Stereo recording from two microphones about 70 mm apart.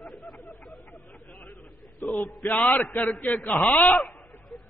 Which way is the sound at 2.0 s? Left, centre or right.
Left.